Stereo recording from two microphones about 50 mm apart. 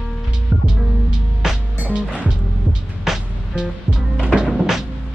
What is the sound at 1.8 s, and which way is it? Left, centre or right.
Music, right.